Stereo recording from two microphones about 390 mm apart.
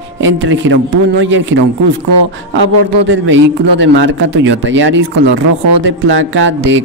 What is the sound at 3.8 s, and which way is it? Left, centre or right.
A man's voice, right.